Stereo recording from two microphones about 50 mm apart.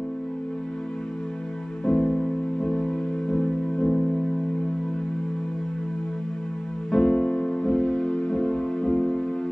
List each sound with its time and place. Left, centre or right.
1.9 s music: centre
6.9 s music: centre